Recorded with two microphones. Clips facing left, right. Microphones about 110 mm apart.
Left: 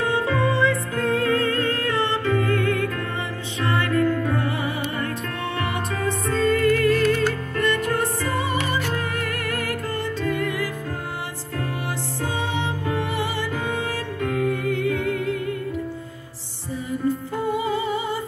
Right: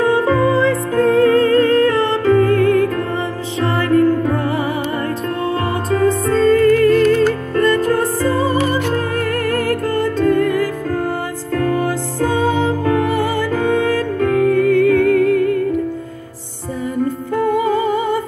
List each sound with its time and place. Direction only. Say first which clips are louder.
0.0 s music: right 8 dB; 35° right (ahead or behind); by 15.5 s 50° right (ahead or behind)
17.4 s music: right 11 dB; 45° right (ahead or behind)